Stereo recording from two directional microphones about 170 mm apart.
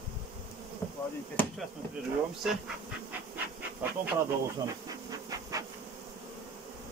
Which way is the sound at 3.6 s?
10° right (ahead or behind).